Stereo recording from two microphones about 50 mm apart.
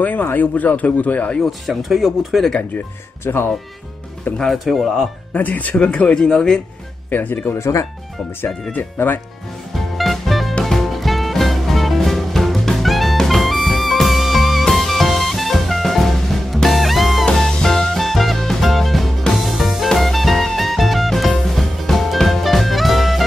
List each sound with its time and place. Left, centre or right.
0.0 s speech: left
1.4 s speech: centre
3.3 s speech: left
4.4 s speech: centre
5.3 s speech: left
5.9 s speech: centre
7.1 s speech: left
7.5 s speech: left
8.9 s speech: left
9.8 s music: centre
17.3 s music: centre